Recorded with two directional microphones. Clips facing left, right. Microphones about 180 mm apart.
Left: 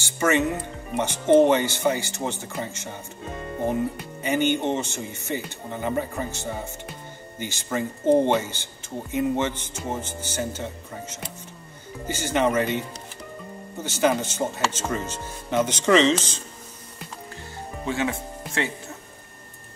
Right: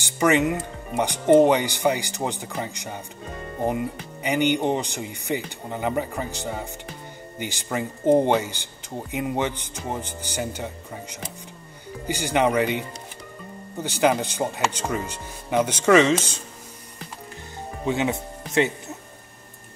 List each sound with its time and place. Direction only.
0.0 s speech: 15° right (ahead or behind)
4.2 s speech: 15° right (ahead or behind)
13.8 s speech: 15° right (ahead or behind)
17.8 s speech: 20° right (ahead or behind)